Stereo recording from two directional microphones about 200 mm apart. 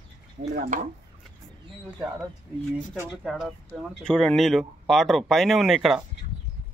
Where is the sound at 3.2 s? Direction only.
Centre (ahead or behind).